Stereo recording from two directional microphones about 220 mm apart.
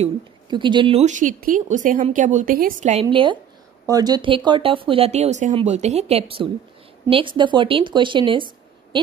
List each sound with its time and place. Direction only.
0.0 s speech: 20° right (ahead or behind)